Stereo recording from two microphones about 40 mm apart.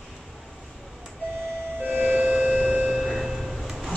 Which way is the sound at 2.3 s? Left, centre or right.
Right.